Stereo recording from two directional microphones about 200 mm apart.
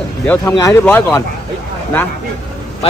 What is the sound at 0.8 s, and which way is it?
Speech, 5° left (ahead or behind).